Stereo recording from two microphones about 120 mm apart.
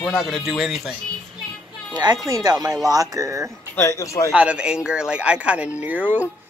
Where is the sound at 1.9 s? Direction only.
35° right (ahead or behind).